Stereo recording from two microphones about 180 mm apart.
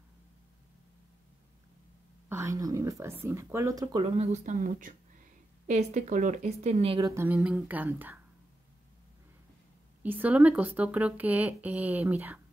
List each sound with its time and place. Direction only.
2.2 s a woman's voice: 15° right (ahead or behind)
4.0 s a woman's voice: 40° right (ahead or behind)
7.1 s speech: 10° right (ahead or behind)
10.0 s speech: 10° right (ahead or behind)